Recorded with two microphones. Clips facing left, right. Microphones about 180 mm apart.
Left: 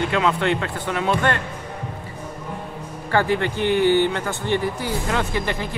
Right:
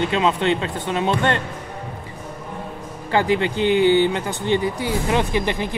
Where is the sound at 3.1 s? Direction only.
15° right (ahead or behind).